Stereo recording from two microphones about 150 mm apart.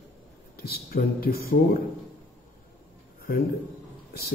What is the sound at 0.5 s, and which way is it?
Speech, 90° left.